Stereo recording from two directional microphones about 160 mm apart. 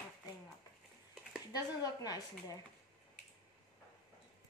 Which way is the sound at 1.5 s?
25° left (ahead or behind).